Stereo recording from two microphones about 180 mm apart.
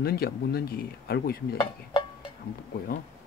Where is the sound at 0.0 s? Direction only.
60° left (ahead or behind).